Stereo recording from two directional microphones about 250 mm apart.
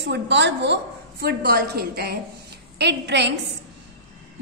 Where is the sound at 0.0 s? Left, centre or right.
Right.